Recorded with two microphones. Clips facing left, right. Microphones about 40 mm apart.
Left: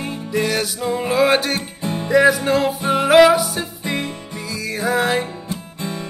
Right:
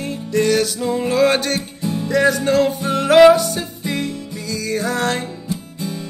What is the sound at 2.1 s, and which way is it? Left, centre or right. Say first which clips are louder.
Music: left 2 dB; centre.